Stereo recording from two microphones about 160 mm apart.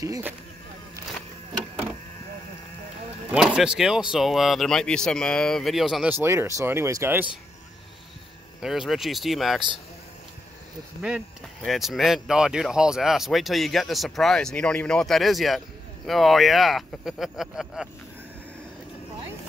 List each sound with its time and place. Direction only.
0.0 s speech: 20° right (ahead or behind)
3.3 s speech: centre (ahead or behind)
6.2 s speech: 15° right (ahead or behind)
8.5 s speech: 5° right (ahead or behind)
11.0 s speech: 5° right (ahead or behind)